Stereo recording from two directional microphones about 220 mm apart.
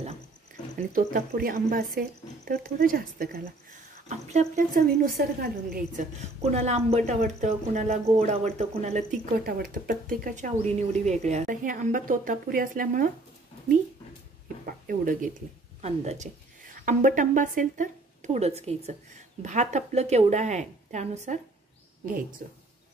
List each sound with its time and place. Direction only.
0.9 s speech: 40° right (ahead or behind)
6.4 s speech: 30° right (ahead or behind)
14.7 s speech: 40° right (ahead or behind)